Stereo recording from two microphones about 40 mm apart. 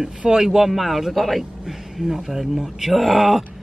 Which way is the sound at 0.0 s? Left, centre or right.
Centre.